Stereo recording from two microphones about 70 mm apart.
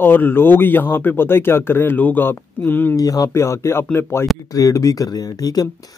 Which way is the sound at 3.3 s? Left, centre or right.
Left.